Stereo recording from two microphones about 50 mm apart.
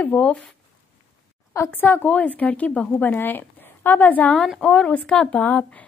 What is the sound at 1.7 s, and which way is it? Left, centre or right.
A woman's voice, left.